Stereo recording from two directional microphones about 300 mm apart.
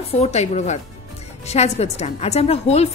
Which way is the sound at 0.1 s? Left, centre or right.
Left.